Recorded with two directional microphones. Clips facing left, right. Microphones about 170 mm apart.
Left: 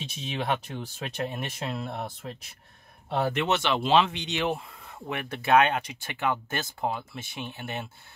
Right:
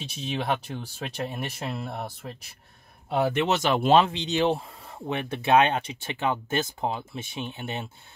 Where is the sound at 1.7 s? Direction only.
5° right (ahead or behind).